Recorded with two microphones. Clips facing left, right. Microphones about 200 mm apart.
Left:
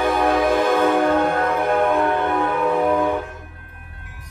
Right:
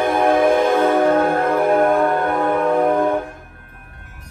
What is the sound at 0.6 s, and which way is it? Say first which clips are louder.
Music: right 2 dB; 15° right (ahead or behind).